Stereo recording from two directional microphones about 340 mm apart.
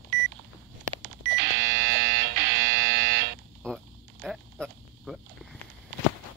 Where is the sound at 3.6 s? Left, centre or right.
Centre.